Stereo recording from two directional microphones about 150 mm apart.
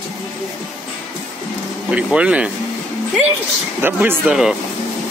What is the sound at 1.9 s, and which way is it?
Speech, 10° right (ahead or behind).